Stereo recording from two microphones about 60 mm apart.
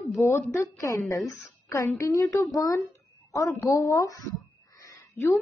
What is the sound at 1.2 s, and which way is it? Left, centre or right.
Speech, left.